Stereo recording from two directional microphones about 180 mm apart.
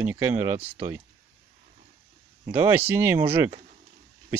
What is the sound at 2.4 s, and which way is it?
Speech, 15° right (ahead or behind).